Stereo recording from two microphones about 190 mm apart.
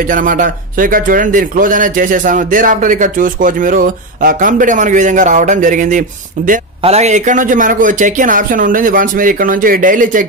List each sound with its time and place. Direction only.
0.1 s a man's voice: 45° right (ahead or behind)